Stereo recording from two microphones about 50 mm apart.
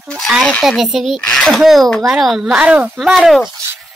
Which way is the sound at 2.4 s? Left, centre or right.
Centre.